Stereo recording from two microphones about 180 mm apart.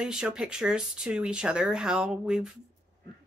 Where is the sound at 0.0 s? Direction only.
5° right (ahead or behind).